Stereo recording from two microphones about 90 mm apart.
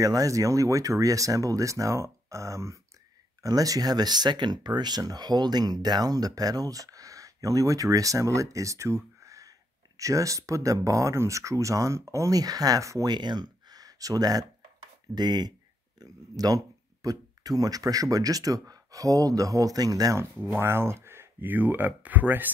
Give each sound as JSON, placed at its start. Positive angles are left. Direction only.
{"t": 0.0, "sound": "speech", "side_deg": -40}
{"t": 13.1, "sound": "speech", "side_deg": -55}
{"t": 20.3, "sound": "speech", "side_deg": -25}